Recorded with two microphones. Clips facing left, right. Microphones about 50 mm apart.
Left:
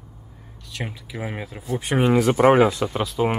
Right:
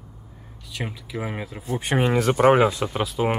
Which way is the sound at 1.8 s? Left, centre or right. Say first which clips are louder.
Left 1 dB; right.